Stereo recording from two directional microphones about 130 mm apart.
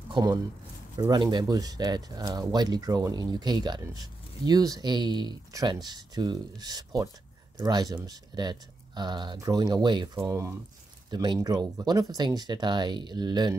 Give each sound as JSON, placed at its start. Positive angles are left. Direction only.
{"t": 0.1, "sound": "speech", "side_deg": -30}
{"t": 10.1, "sound": "speech", "side_deg": -20}